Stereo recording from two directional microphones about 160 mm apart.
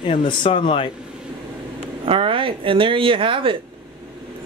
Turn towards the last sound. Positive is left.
turn(degrees=-35)  # may be behind; listen again after turning